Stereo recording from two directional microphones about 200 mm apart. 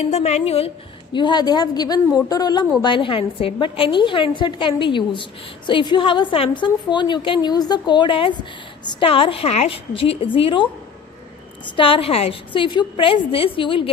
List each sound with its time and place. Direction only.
0.0 s a woman's voice: 35° left (ahead or behind)
11.7 s a woman's voice: 25° left (ahead or behind)